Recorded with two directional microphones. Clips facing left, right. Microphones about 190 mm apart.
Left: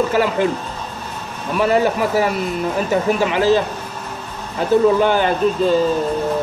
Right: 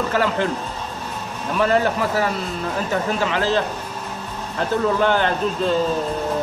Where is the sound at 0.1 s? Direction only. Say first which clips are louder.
Left 4 dB; 10° left (ahead or behind).